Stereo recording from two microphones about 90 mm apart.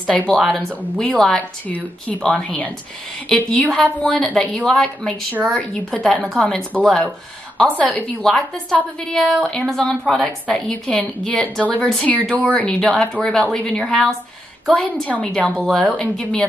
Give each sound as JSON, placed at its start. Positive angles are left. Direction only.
{"t": 0.3, "sound": "speech", "side_deg": 5}